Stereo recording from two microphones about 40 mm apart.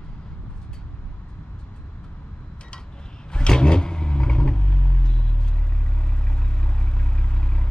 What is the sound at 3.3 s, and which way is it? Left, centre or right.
Vehicle, left.